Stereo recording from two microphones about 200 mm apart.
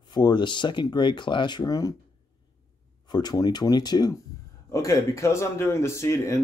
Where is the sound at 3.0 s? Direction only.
20° left (ahead or behind).